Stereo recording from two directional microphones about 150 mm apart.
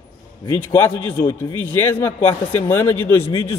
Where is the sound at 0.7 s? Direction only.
15° left (ahead or behind).